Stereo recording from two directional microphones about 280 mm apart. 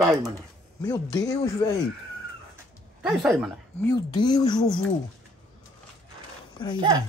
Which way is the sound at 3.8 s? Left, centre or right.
Centre.